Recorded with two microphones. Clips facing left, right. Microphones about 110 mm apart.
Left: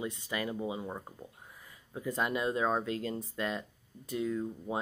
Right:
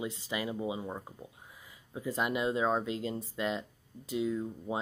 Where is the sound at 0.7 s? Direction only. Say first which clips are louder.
Even; centre (ahead or behind).